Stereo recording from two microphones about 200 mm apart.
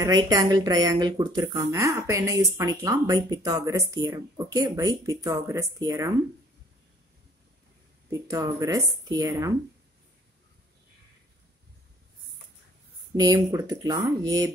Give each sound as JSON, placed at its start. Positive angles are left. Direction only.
{"t": 0.0, "sound": "speech", "side_deg": -20}
{"t": 8.1, "sound": "speech", "side_deg": -15}
{"t": 13.1, "sound": "speech", "side_deg": -15}